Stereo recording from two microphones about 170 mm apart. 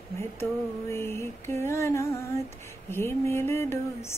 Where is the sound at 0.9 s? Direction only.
15° left (ahead or behind).